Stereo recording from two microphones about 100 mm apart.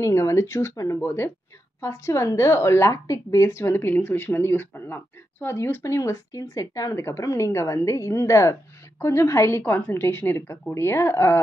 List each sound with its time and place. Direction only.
0.0 s a woman's voice: 30° left (ahead or behind)